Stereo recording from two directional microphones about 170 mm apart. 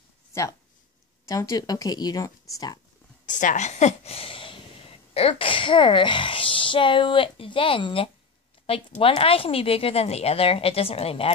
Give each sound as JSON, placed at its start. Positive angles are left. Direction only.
{"t": 0.3, "sound": "speech", "side_deg": 15}
{"t": 3.3, "sound": "a woman's voice", "side_deg": 50}